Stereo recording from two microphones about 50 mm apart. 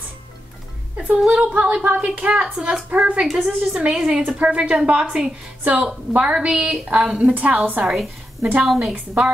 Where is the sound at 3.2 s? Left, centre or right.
Centre.